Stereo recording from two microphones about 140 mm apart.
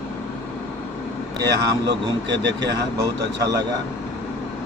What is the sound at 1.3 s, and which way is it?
Speech, 30° right (ahead or behind).